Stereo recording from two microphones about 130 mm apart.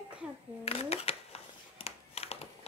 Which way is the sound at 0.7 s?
50° left (ahead or behind).